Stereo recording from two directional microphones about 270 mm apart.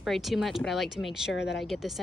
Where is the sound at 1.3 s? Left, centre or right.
Left.